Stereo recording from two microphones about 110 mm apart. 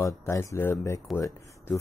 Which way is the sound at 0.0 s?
25° left (ahead or behind).